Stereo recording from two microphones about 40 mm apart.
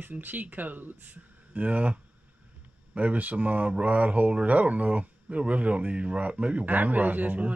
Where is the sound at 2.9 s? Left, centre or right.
Right.